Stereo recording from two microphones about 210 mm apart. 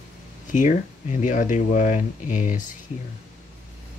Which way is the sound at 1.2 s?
35° left (ahead or behind).